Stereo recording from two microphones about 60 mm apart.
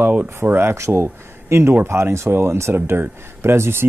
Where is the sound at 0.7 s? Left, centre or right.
Right.